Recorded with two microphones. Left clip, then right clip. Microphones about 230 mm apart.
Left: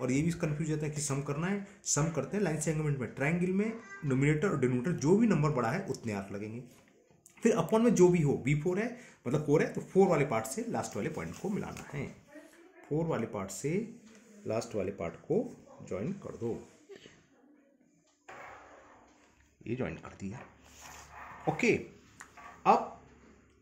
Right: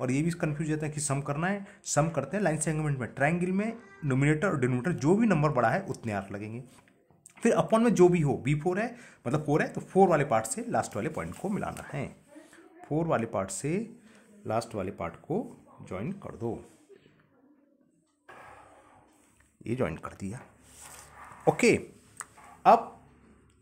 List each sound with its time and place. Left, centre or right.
0.0 s speech: right
19.6 s speech: right
21.5 s a sound: right